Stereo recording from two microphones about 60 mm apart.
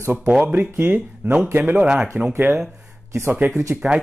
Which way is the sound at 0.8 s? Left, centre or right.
Right.